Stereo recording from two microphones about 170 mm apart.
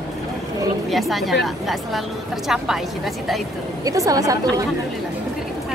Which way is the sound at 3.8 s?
20° right (ahead or behind).